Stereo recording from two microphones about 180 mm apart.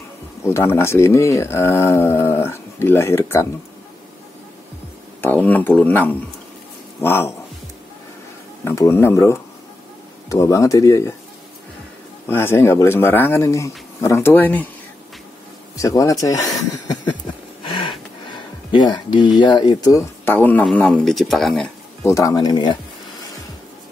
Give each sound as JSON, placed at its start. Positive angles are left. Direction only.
{"t": 0.4, "sound": "speech", "side_deg": 15}
{"t": 5.2, "sound": "speech", "side_deg": 10}
{"t": 8.6, "sound": "speech", "side_deg": 15}
{"t": 12.3, "sound": "speech", "side_deg": 15}
{"t": 15.7, "sound": "a sound", "side_deg": 20}
{"t": 18.7, "sound": "speech", "side_deg": 25}
{"t": 22.0, "sound": "speech", "side_deg": 20}